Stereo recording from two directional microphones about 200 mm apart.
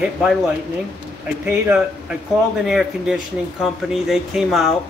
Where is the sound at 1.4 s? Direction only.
5° right (ahead or behind).